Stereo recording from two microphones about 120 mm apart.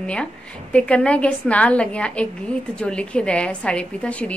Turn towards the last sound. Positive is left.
turn(degrees=10)  # may be behind; listen again after turning